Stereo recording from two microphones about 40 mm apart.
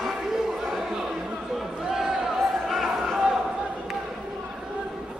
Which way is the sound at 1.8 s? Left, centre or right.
Centre.